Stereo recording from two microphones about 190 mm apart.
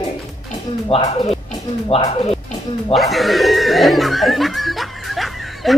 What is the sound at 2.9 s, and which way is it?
Chuckle, centre (ahead or behind).